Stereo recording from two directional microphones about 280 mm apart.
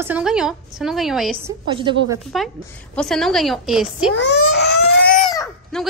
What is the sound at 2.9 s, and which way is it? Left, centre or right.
A woman's voice, centre.